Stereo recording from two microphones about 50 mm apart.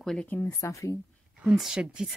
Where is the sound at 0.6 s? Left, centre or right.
Left.